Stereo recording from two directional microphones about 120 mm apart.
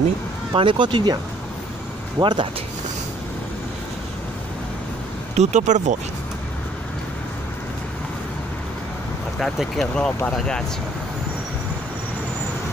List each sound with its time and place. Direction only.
0.5 s speech: 45° right (ahead or behind)
2.1 s speech: 35° right (ahead or behind)
5.3 s speech: 75° right (ahead or behind)
9.4 s speech: centre (ahead or behind)